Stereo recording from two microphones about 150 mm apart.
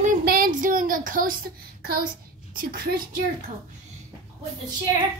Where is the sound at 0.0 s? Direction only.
75° right (ahead or behind).